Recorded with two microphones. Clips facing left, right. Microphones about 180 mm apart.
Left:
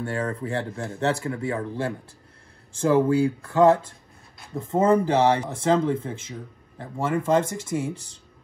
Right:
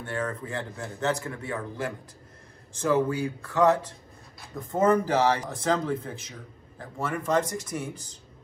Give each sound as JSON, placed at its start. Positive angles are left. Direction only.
{"t": 0.0, "sound": "speech", "side_deg": 35}